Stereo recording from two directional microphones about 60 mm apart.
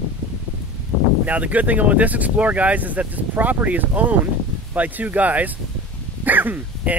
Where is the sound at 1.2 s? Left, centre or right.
Right.